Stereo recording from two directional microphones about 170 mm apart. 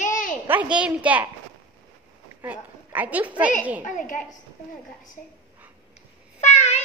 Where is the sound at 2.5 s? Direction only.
10° right (ahead or behind).